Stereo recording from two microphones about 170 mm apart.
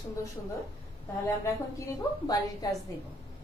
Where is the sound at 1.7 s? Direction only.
20° left (ahead or behind).